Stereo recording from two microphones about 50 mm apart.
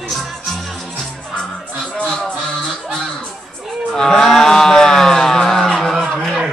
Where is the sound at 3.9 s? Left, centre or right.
Centre.